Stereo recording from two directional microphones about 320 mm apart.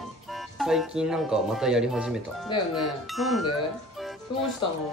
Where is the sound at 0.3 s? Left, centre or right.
Centre.